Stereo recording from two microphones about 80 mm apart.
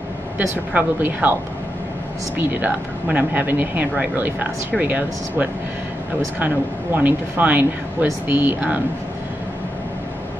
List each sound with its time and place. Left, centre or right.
0.7 s speech: right
2.3 s speech: right